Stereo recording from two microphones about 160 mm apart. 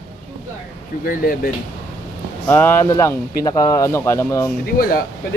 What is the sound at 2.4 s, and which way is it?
Speech, 10° left (ahead or behind).